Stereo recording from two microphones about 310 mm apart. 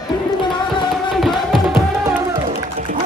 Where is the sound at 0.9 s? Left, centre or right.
Centre.